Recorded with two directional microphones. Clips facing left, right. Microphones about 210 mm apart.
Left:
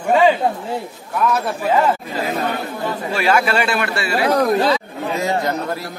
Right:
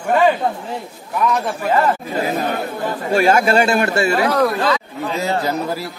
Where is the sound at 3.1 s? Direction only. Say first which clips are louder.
Right 4 dB; 45° right (ahead or behind).